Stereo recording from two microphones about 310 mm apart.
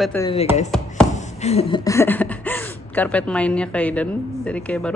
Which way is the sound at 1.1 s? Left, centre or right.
Left.